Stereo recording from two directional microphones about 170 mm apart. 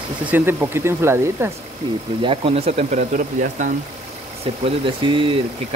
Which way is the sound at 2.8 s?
50° right (ahead or behind).